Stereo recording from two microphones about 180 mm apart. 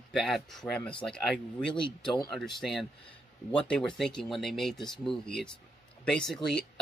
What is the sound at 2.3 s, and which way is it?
Speech, centre (ahead or behind).